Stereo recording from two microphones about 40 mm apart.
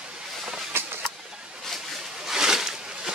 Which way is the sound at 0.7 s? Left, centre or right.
Right.